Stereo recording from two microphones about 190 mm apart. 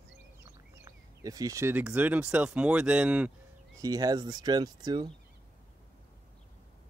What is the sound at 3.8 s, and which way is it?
Speech, 20° right (ahead or behind).